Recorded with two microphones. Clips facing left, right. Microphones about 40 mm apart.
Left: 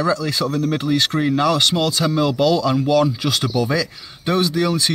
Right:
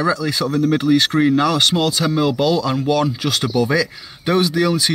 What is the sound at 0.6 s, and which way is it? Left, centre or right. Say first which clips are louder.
Speech: right 6 dB; right.